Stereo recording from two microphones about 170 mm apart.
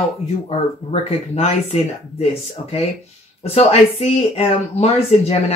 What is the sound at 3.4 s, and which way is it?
Speech, 35° left (ahead or behind).